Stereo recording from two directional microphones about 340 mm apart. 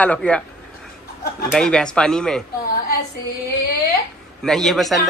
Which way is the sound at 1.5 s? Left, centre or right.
Centre.